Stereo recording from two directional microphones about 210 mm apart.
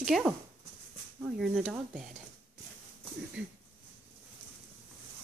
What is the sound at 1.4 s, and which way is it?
Speech, 5° right (ahead or behind).